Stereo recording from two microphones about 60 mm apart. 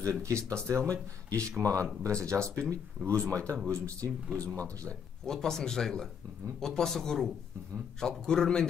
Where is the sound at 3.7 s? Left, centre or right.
Right.